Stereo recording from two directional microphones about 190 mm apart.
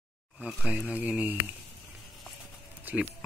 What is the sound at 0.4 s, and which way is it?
Speech, 5° right (ahead or behind).